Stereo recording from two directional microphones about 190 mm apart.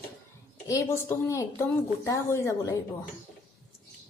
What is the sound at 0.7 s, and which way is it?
A woman's voice, 15° left (ahead or behind).